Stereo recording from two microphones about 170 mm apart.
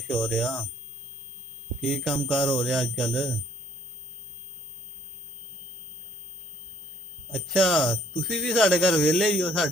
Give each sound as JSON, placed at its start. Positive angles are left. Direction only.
{"t": 0.1, "sound": "speech", "side_deg": 0}
{"t": 1.8, "sound": "speech", "side_deg": 0}
{"t": 7.3, "sound": "speech", "side_deg": 0}